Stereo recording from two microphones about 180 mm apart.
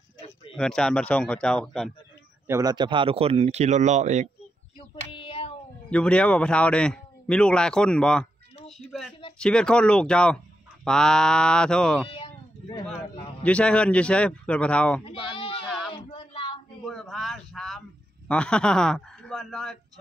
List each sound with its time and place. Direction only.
0.6 s speech: 5° left (ahead or behind)
2.4 s speech: 15° right (ahead or behind); by 4.3 s 40° right (ahead or behind)
5.1 s child singing: 30° left (ahead or behind)
5.9 s speech: 5° left (ahead or behind)
9.4 s speech: 5° left (ahead or behind)
12.1 s a sound: 25° left (ahead or behind)
13.4 s speech: 5° left (ahead or behind)
15.0 s bleat: 30° left (ahead or behind)
15.9 s a sound: 30° left (ahead or behind)
16.8 s a sound: centre (ahead or behind)
18.3 s speech: 5° left (ahead or behind)